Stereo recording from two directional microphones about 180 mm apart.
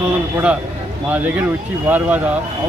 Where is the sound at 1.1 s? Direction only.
10° right (ahead or behind).